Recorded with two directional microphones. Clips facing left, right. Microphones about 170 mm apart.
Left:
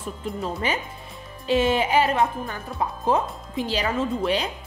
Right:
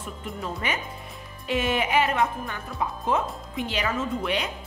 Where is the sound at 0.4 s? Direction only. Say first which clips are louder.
Left 3 dB; 30° left (ahead or behind).